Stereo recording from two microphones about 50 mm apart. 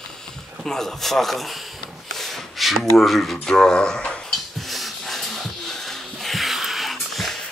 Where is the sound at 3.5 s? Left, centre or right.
Centre.